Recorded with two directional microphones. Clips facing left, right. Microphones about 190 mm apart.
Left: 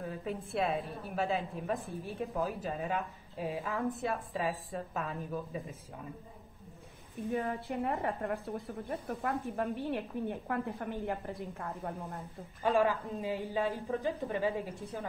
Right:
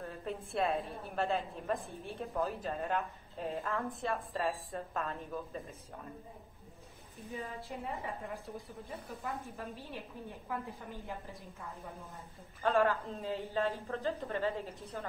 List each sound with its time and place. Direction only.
0.0 s a woman's voice: 5° left (ahead or behind)
7.3 s a woman's voice: 60° left (ahead or behind)
12.6 s a man's voice: 10° left (ahead or behind)